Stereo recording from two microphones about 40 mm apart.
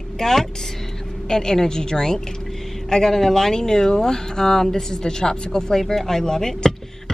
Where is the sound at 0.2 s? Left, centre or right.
Centre.